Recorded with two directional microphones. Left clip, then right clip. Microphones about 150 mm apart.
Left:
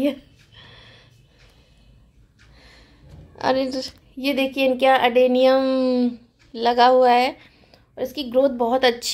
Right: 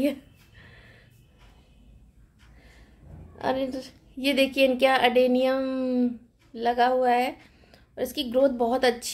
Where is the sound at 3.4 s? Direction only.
20° left (ahead or behind).